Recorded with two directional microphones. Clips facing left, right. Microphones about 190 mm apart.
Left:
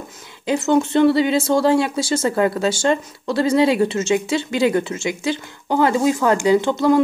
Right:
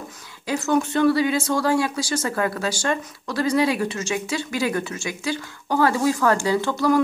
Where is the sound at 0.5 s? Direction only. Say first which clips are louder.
Left 4 dB; 25° left (ahead or behind).